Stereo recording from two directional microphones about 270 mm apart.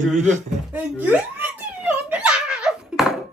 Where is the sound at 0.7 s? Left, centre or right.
Centre.